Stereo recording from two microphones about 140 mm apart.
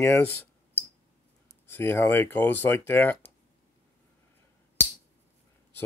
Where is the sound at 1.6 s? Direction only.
15° left (ahead or behind).